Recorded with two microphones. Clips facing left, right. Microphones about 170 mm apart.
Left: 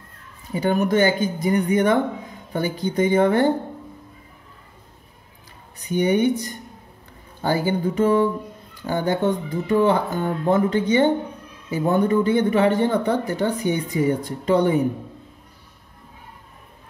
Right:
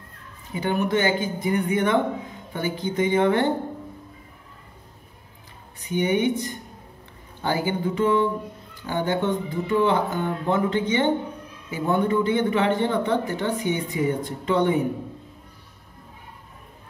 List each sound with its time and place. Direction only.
0.6 s speech: 40° left (ahead or behind)
5.8 s speech: 40° left (ahead or behind)
7.4 s speech: 40° left (ahead or behind)